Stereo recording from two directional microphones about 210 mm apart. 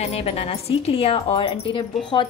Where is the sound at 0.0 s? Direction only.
30° left (ahead or behind).